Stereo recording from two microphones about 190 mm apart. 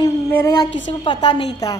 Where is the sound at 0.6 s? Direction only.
75° left (ahead or behind).